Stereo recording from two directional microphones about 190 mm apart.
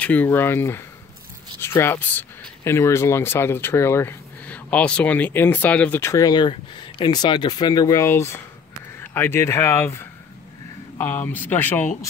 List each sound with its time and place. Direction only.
0.0 s speech: 10° left (ahead or behind)